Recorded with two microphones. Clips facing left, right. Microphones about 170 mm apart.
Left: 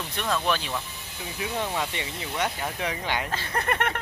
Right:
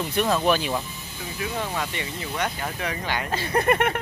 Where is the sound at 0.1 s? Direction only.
10° right (ahead or behind).